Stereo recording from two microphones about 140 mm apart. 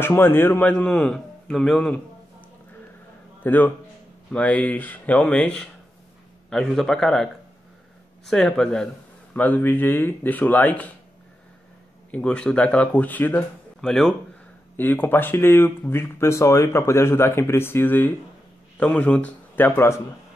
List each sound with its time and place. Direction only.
0.0 s speech: 15° left (ahead or behind)
3.4 s a man's voice: 15° left (ahead or behind)
8.3 s a man's voice: 5° left (ahead or behind)
12.1 s a man's voice: 10° left (ahead or behind)